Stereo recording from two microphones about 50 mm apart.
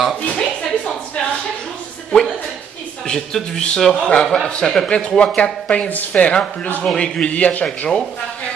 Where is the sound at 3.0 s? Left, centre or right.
Centre.